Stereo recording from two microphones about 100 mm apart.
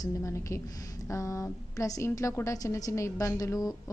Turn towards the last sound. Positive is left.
turn(degrees=35)  # may be behind; listen again after turning